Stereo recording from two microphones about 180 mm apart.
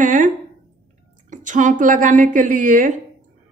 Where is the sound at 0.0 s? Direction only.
45° right (ahead or behind).